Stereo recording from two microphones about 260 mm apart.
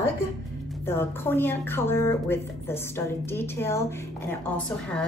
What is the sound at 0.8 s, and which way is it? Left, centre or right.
A woman's voice, centre.